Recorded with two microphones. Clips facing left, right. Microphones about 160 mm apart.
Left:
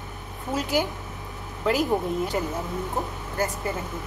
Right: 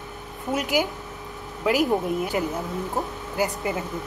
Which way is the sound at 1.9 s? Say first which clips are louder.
Right 1 dB; 5° right (ahead or behind).